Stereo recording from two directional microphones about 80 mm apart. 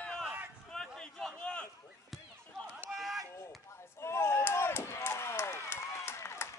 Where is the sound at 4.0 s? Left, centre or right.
Left.